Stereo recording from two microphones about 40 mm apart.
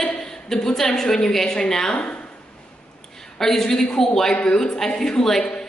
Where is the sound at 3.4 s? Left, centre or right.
Centre.